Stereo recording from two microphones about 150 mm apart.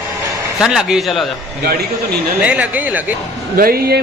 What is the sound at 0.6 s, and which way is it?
Speech, 5° right (ahead or behind).